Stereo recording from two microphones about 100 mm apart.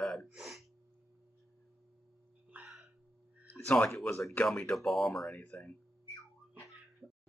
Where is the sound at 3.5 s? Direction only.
15° left (ahead or behind).